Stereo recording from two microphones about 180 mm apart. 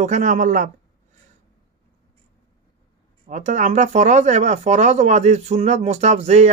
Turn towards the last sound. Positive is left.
turn(degrees=-40)  # may be behind; listen again after turning